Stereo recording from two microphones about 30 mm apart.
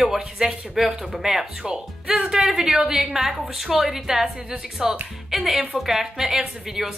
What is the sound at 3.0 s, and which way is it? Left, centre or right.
A woman's voice, centre.